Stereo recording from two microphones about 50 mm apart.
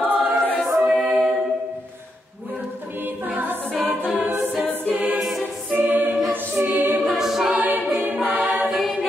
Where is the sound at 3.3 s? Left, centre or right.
Right.